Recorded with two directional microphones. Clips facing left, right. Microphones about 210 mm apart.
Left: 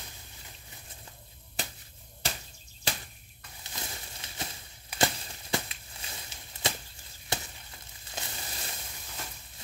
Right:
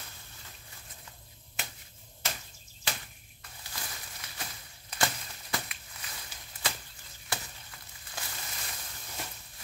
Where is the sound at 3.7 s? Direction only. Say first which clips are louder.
Left 3 dB; 25° left (ahead or behind).